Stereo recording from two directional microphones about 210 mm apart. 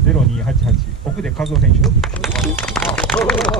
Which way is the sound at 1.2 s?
Centre (ahead or behind).